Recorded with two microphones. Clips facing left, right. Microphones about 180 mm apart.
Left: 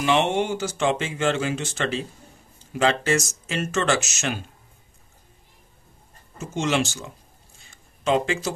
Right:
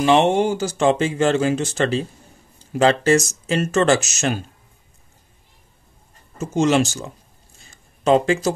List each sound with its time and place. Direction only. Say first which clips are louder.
0.0 s speech: right 6 dB; 35° right (ahead or behind)
6.3 s speech: right 7 dB; 40° right (ahead or behind)
7.7 s a sound: right 6 dB; 40° right (ahead or behind)